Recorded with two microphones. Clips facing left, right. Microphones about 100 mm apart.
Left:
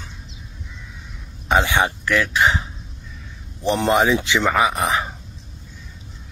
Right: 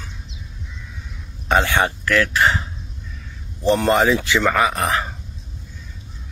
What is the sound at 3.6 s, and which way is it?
Speech, 15° left (ahead or behind).